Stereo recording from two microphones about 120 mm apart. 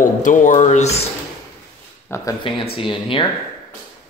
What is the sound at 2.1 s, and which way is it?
Speech, 30° left (ahead or behind).